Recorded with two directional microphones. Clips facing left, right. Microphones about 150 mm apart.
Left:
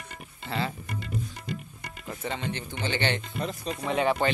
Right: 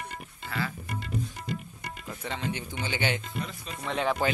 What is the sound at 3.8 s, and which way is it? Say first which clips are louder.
Speech: left 3 dB; 10° left (ahead or behind).